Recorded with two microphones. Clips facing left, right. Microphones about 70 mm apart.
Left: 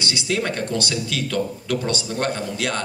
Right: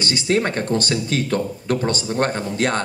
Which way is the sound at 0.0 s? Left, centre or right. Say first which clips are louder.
Right 4 dB; right.